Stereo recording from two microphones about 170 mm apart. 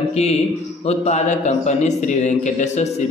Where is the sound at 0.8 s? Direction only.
40° left (ahead or behind).